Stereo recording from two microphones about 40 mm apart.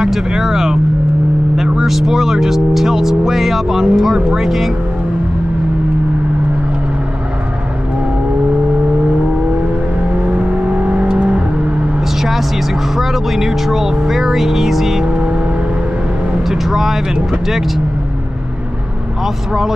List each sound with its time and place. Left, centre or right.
0.0 s speech: centre
10.9 s vehicle: right
12.2 s vehicle: centre
16.4 s vehicle: centre
19.2 s speech: centre